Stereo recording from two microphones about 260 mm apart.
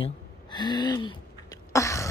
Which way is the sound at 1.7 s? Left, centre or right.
Centre.